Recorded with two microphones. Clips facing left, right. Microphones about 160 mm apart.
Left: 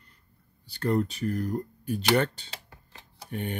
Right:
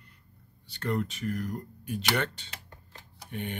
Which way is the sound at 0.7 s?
35° left (ahead or behind).